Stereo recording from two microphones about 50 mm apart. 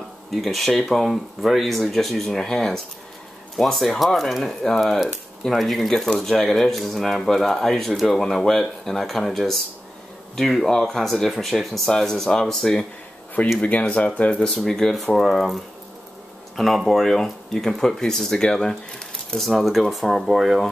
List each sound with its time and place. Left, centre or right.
0.3 s speech: centre
13.6 s speech: left
14.6 s speech: centre